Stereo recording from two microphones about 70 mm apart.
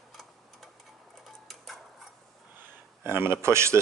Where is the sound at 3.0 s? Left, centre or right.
Right.